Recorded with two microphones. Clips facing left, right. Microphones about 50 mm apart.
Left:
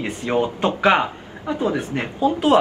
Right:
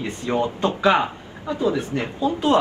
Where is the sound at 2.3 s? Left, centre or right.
Left.